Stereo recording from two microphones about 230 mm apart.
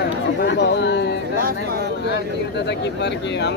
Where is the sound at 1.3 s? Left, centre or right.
Right.